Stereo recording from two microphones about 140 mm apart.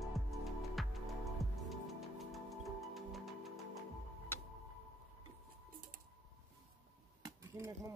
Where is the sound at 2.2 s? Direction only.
Centre (ahead or behind).